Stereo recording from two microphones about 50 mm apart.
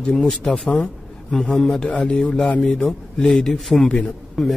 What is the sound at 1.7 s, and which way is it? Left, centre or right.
Speech, left.